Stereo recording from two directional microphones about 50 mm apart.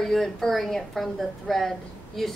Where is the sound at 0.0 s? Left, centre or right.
Centre.